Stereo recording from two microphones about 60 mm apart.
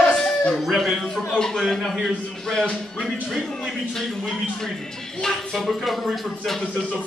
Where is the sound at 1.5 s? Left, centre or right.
Centre.